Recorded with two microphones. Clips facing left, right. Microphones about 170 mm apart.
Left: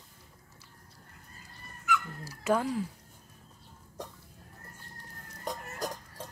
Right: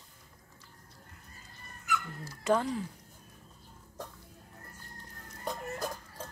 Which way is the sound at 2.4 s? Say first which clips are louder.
Even; 5° left (ahead or behind).